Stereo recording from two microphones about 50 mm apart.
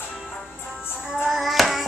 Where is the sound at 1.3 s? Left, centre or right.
Centre.